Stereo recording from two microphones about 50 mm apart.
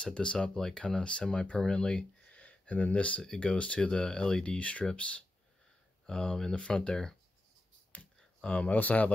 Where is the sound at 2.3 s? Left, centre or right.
Left.